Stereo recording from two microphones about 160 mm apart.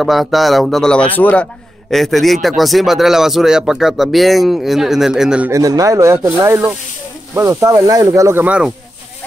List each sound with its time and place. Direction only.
0.0 s speech: centre (ahead or behind)
5.5 s speech: 20° right (ahead or behind)